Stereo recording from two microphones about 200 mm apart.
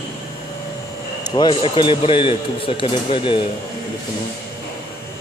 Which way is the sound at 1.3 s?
20° left (ahead or behind).